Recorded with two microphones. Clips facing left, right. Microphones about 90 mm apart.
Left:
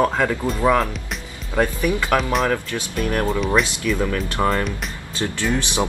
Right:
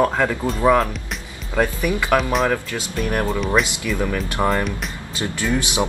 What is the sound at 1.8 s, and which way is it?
Speech, 20° right (ahead or behind).